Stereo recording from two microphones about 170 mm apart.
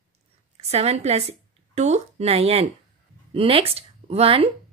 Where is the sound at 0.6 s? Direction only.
40° right (ahead or behind).